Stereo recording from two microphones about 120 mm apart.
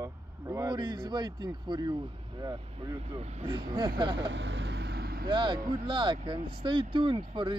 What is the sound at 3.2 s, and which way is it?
Speech, 65° right (ahead or behind).